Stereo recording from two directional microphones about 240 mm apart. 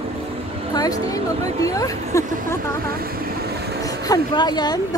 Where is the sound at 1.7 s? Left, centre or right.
Centre.